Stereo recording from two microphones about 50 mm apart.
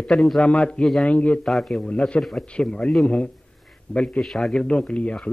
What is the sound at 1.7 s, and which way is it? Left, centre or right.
Speech, left.